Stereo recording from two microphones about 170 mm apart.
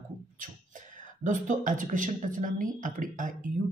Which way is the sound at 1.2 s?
50° right (ahead or behind).